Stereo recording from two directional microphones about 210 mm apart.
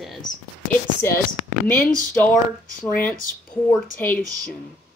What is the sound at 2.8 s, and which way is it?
Speech, 5° left (ahead or behind).